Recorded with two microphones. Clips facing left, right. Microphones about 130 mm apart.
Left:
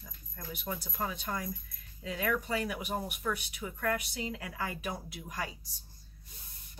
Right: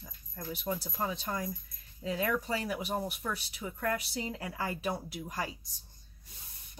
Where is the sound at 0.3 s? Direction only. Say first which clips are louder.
Right 4 dB; 30° right (ahead or behind).